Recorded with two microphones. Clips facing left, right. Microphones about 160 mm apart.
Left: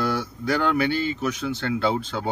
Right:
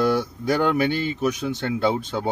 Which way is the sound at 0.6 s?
50° right (ahead or behind).